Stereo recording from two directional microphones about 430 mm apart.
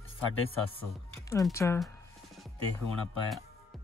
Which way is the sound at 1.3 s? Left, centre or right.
Centre.